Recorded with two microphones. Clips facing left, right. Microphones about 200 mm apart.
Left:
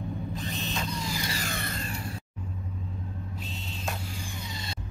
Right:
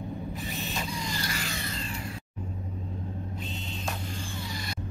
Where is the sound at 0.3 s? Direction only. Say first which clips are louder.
Left 1 dB; 15° right (ahead or behind).